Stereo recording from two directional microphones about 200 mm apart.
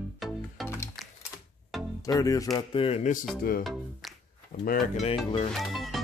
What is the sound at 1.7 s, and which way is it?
Music, centre (ahead or behind).